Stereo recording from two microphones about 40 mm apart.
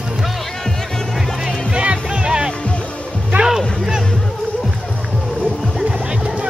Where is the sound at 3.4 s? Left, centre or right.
Centre.